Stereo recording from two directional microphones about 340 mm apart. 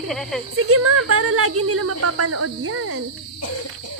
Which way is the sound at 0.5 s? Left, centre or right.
Right.